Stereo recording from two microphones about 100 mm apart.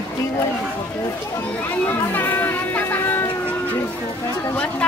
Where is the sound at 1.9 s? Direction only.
20° left (ahead or behind).